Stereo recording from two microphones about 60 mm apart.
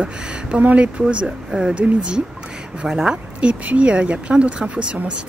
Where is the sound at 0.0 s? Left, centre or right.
Right.